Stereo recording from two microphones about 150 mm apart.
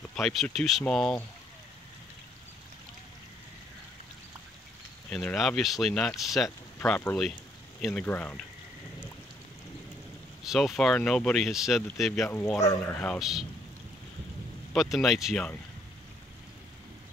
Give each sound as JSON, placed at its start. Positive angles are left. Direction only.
{"t": 0.1, "sound": "speech", "side_deg": 0}
{"t": 5.1, "sound": "speech", "side_deg": 5}
{"t": 6.8, "sound": "speech", "side_deg": 10}
{"t": 10.4, "sound": "speech", "side_deg": 0}
{"t": 12.3, "sound": "speech", "side_deg": 15}
{"t": 13.2, "sound": "speech", "side_deg": 0}
{"t": 14.7, "sound": "speech", "side_deg": 0}